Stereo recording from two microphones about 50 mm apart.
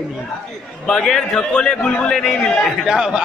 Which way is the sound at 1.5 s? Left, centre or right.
Left.